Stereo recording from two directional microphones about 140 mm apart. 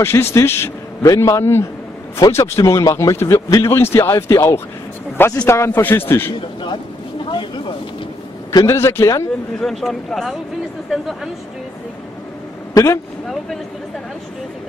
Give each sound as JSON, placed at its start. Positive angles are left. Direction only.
{"t": 0.0, "sound": "a man's voice", "side_deg": 20}
{"t": 7.2, "sound": "a sound", "side_deg": 35}
{"t": 8.5, "sound": "a man's voice", "side_deg": 20}
{"t": 9.6, "sound": "speech", "side_deg": 0}
{"t": 12.7, "sound": "speech", "side_deg": 20}